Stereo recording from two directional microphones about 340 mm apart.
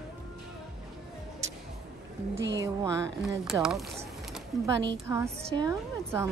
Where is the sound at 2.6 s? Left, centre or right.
Centre.